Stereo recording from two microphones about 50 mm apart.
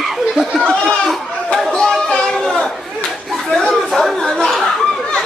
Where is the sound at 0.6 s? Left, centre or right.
Centre.